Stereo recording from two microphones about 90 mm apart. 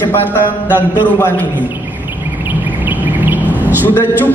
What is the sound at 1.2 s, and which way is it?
Speech, 25° left (ahead or behind).